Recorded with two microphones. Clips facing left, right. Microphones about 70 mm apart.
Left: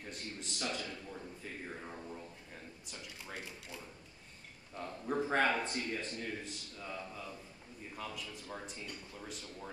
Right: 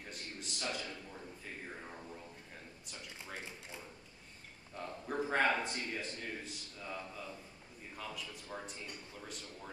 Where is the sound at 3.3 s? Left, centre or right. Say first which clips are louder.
Left 1 dB; right.